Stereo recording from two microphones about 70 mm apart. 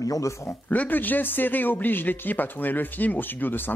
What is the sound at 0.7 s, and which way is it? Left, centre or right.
Speech, left.